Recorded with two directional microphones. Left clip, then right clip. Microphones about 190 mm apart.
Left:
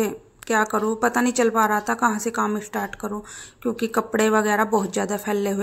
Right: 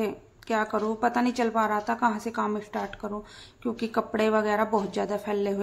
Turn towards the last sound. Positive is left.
turn(degrees=15)  # may be behind; listen again after turning